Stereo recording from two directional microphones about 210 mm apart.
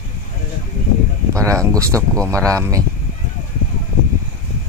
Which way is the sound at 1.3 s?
15° right (ahead or behind).